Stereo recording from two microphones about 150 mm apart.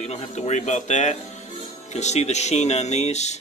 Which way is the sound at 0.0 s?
50° left (ahead or behind).